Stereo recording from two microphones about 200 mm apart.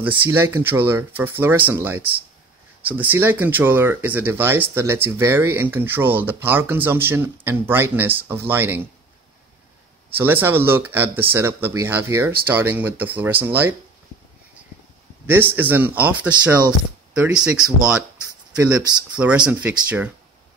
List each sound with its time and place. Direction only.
0.3 s speech: 10° right (ahead or behind)
10.1 s speech: 10° right (ahead or behind)
15.2 s speech: 10° right (ahead or behind)